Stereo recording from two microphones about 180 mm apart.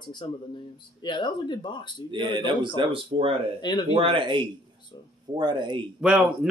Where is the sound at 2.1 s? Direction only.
25° right (ahead or behind).